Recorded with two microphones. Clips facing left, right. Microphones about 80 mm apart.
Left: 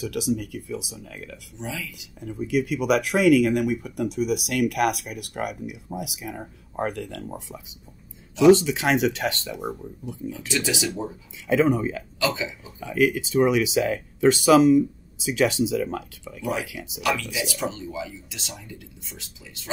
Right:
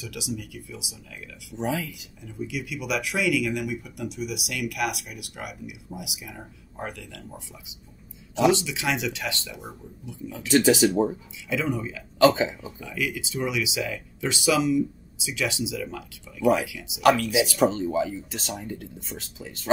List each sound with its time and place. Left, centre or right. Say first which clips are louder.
0.0 s speech: left 8 dB; left
1.6 s speech: right 6 dB; right
2.2 s speech: left 8 dB; left
10.5 s speech: right 9 dB; right
11.4 s speech: left 7 dB; left
12.2 s speech: right 8 dB; right
12.8 s speech: left 9 dB; left
17.0 s speech: right 6 dB; right
17.3 s speech: right 6 dB; left
17.6 s speech: right 8 dB; right